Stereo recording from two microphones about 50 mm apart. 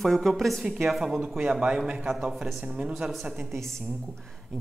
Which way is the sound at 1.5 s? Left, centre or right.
Centre.